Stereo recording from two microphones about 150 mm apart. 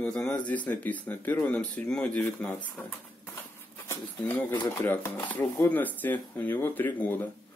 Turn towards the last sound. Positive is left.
turn(degrees=10)  # may be behind; listen again after turning